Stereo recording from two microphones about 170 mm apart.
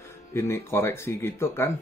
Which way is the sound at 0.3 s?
15° left (ahead or behind).